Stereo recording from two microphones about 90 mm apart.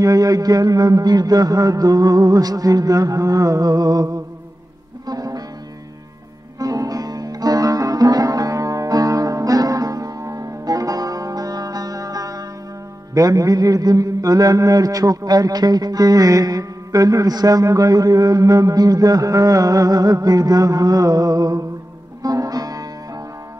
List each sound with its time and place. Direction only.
0.0 s a man's voice: 40° right (ahead or behind)
5.0 s music: 45° right (ahead or behind)
6.6 s music: 40° right (ahead or behind)
13.1 s mantra: 40° right (ahead or behind)
22.2 s music: 45° right (ahead or behind)